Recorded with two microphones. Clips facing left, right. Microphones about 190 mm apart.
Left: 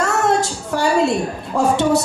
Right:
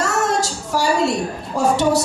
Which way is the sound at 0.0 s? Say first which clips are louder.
Left 2 dB; 60° left (ahead or behind).